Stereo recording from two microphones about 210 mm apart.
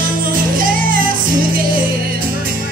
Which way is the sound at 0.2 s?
40° right (ahead or behind).